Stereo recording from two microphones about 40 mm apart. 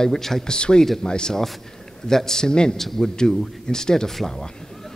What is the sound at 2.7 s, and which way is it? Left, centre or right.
Speech, centre.